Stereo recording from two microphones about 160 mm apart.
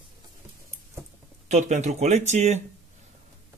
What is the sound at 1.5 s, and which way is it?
Speech, 45° right (ahead or behind).